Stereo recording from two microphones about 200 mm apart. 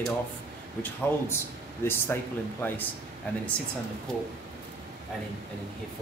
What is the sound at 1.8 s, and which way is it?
Speech, 10° left (ahead or behind).